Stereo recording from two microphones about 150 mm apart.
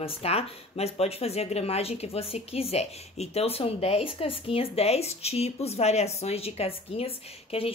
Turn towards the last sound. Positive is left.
turn(degrees=40)  # may be behind; listen again after turning